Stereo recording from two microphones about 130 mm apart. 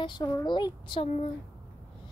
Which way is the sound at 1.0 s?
55° left (ahead or behind).